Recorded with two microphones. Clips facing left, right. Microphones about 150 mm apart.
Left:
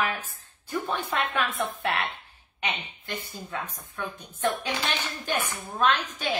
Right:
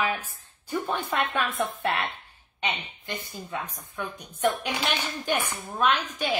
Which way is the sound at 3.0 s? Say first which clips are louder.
Right 1 dB; 15° right (ahead or behind).